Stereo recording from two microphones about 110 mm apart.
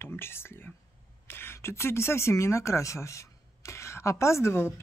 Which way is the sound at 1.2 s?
20° left (ahead or behind).